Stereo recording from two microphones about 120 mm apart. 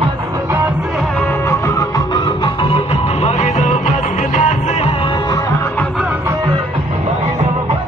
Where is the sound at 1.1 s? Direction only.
15° left (ahead or behind).